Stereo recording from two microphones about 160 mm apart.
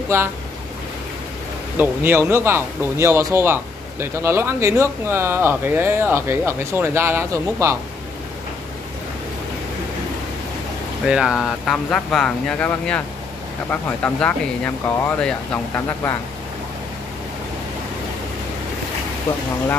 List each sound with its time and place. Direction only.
0.1 s speech: 15° right (ahead or behind)
1.8 s speech: 15° right (ahead or behind)
11.1 s speech: 5° right (ahead or behind); by 16.2 s 15° left (ahead or behind)